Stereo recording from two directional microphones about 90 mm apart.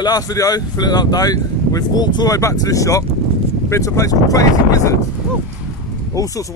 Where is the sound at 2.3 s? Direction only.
40° left (ahead or behind).